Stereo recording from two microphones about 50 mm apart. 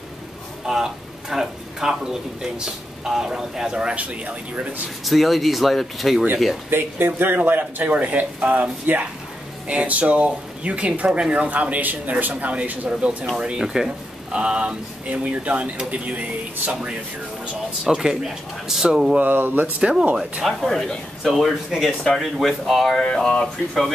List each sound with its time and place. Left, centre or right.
0.7 s speech: centre
3.9 s speech: right
5.0 s speech: centre
6.7 s a man's voice: right; by 11.4 s centre
11.4 s a man's voice: right
17.8 s speech: centre
19.1 s a man's voice: right
19.8 s speech: centre
20.4 s speech: centre
23.0 s speech: centre